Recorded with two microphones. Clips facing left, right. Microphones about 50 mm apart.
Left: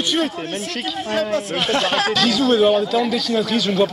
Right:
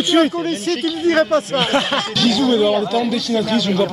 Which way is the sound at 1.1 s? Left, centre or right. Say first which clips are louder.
Right 6 dB; right.